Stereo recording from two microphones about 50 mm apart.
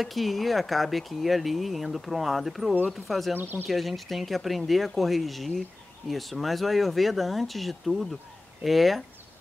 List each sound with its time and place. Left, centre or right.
0.0 s speech: centre
3.3 s speech: right
3.6 s speech: centre